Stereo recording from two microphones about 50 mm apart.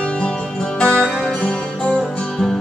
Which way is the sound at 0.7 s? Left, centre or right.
Left.